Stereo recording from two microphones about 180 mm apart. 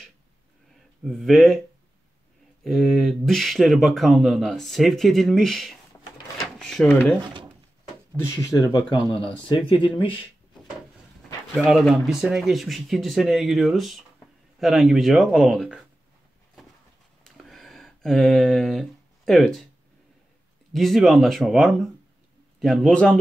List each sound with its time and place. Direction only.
1.0 s speech: centre (ahead or behind)
2.6 s speech: centre (ahead or behind)
6.3 s drawer open or close: centre (ahead or behind)
8.5 s speech: 20° left (ahead or behind)
11.5 s speech: centre (ahead or behind)
17.2 s a sound: centre (ahead or behind)
20.7 s speech: centre (ahead or behind)